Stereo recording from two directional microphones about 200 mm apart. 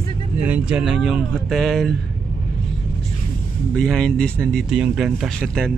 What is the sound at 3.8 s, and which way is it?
Speech, 5° left (ahead or behind).